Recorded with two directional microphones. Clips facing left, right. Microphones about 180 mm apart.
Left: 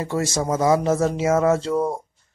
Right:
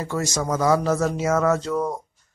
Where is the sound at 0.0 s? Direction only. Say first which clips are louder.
Left 2 dB; 25° left (ahead or behind).